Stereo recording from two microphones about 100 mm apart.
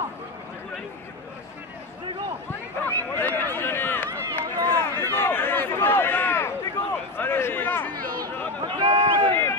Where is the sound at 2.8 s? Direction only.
20° left (ahead or behind).